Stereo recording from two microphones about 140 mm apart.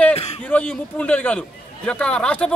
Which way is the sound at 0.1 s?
45° left (ahead or behind).